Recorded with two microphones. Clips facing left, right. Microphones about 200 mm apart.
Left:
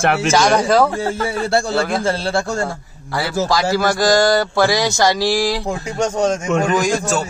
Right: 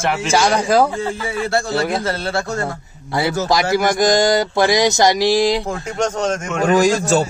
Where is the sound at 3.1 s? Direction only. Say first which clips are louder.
Right 1 dB; 20° right (ahead or behind).